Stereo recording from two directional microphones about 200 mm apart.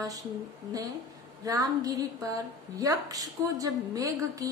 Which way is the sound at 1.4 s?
15° right (ahead or behind).